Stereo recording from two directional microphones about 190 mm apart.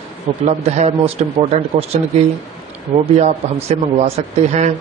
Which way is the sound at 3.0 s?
35° right (ahead or behind).